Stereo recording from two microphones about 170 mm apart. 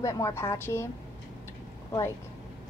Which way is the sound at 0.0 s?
20° left (ahead or behind).